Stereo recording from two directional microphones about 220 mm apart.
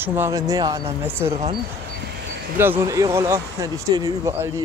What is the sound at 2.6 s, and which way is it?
Speech, 10° right (ahead or behind).